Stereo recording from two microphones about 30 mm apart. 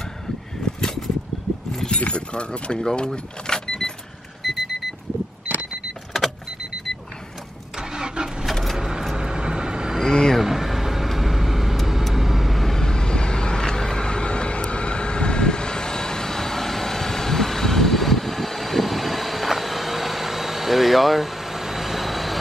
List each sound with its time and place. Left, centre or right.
2.0 s keys jangling: left
4.4 s alarm clock: centre
7.9 s vehicle: right
10.0 s vehicle: centre
10.4 s vehicle: centre
12.6 s vehicle: centre
14.0 s vehicle: left; by 22.4 s centre